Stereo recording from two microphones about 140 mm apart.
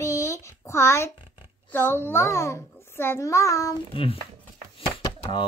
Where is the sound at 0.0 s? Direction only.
20° left (ahead or behind).